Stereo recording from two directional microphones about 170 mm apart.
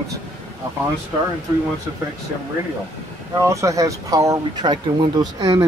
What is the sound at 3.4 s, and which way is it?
Speech, 20° right (ahead or behind).